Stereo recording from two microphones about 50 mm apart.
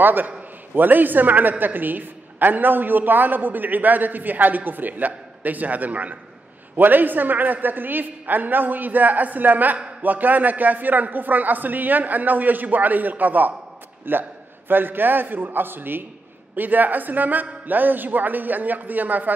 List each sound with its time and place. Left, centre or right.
0.0 s a woman's voice: right
14.1 s a man's voice: right